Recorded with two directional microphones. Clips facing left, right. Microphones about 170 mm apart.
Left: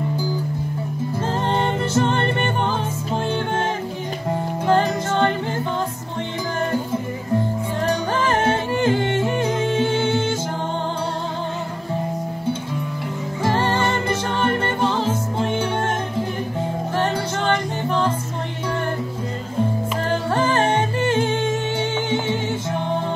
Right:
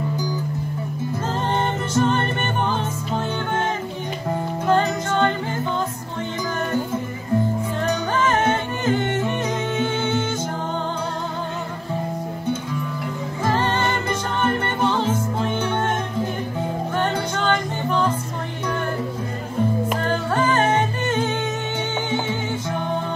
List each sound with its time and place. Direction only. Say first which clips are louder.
1.1 s music: left 2 dB; 30° left (ahead or behind)
4.7 s music: left 1 dB; 30° left (ahead or behind)
7.8 s music: left 1 dB; 30° left (ahead or behind)
13.4 s music: left 1 dB; 30° left (ahead or behind)
17.0 s music: left 1 dB; 30° left (ahead or behind)
20.1 s music: left 2 dB; 30° left (ahead or behind)